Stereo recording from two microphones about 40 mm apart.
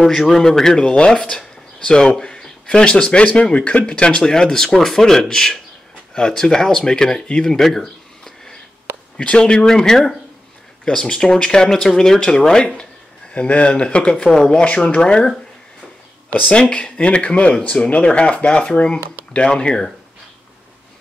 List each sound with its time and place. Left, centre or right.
0.0 s speech: centre
3.0 s speech: left
4.2 s speech: centre
7.5 s a sound: centre
8.9 s a sound: right
9.3 s speech: left
13.3 s speech: left
16.4 s speech: left